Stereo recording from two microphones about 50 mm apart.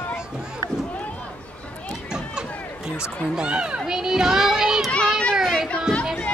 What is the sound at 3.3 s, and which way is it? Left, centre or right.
Speech, centre.